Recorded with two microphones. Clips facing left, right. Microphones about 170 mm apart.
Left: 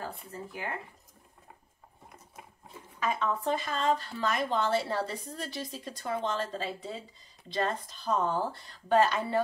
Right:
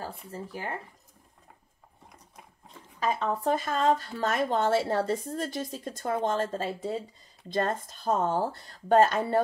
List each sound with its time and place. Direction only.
0.0 s speech: 35° right (ahead or behind)
3.0 s a woman's voice: 35° right (ahead or behind)